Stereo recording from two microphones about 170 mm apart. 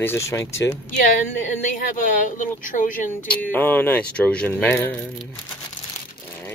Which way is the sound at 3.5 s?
10° left (ahead or behind).